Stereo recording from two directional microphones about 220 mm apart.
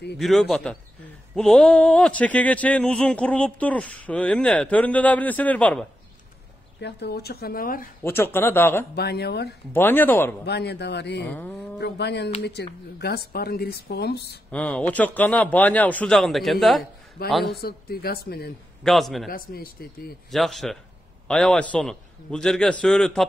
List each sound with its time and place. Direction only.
0.2 s speech: centre (ahead or behind)
6.8 s speech: 50° left (ahead or behind)
8.0 s speech: 10° left (ahead or behind)
8.9 s speech: 45° left (ahead or behind)
9.7 s speech: 10° left (ahead or behind)
10.4 s speech: 50° left (ahead or behind)
11.2 s speech: 5° left (ahead or behind)
11.8 s speech: 50° left (ahead or behind)
14.5 s speech: 5° left (ahead or behind)
17.6 s speech: 45° left (ahead or behind)
18.8 s speech: centre (ahead or behind)
19.3 s speech: 40° left (ahead or behind)
20.2 s speech: centre (ahead or behind)